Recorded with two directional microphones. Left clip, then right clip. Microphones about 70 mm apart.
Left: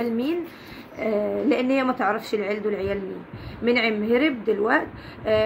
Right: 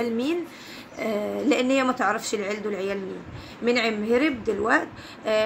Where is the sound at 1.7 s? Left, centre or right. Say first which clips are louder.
Even; right.